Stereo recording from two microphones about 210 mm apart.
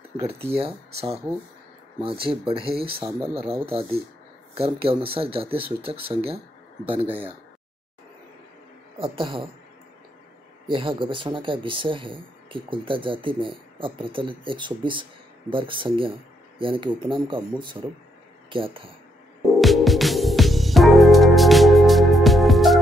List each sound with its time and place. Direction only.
0.2 s speech: 30° right (ahead or behind)
8.9 s speech: 25° right (ahead or behind)
10.7 s speech: 25° right (ahead or behind)
19.4 s music: centre (ahead or behind)